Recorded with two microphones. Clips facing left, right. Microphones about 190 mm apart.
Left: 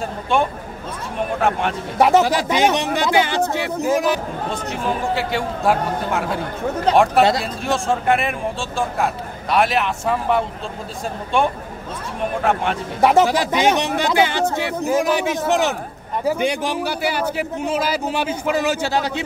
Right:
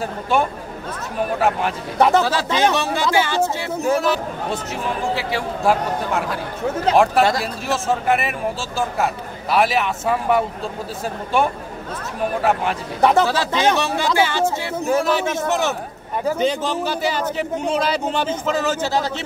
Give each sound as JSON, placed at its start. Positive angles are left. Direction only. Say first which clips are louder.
{"t": 0.0, "sound": "speech", "louder": "even", "side_deg": -5}
{"t": 2.0, "sound": "a man's voice", "louder": "left 2 dB", "side_deg": 15}
{"t": 4.5, "sound": "speech", "louder": "left 2 dB", "side_deg": 0}
{"t": 13.0, "sound": "a man's voice", "louder": "left 1 dB", "side_deg": 15}